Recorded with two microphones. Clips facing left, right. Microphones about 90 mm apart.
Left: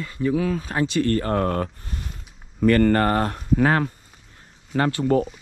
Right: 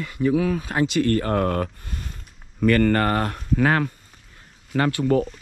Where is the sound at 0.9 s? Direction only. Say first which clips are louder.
Even; 30° left (ahead or behind).